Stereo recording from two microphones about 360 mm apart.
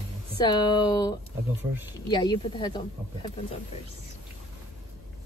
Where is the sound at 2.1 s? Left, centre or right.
Centre.